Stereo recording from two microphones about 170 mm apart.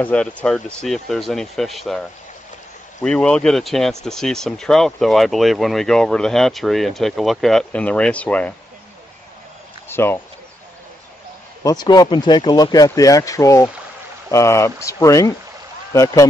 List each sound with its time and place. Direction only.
0.0 s speech: 5° left (ahead or behind)
9.8 s speech: 15° left (ahead or behind)
11.6 s speech: 25° left (ahead or behind)